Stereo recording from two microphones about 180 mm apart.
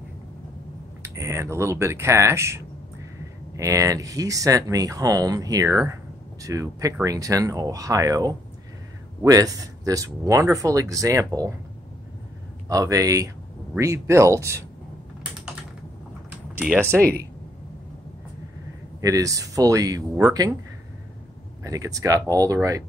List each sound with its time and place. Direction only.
1.0 s speech: 15° right (ahead or behind)
12.6 s speech: 20° right (ahead or behind)
18.9 s speech: 20° right (ahead or behind)
21.6 s speech: 20° right (ahead or behind)